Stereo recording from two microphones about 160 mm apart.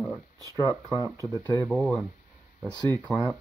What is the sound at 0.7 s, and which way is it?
Speech, 20° right (ahead or behind).